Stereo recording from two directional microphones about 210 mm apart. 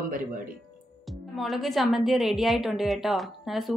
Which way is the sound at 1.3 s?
Centre (ahead or behind).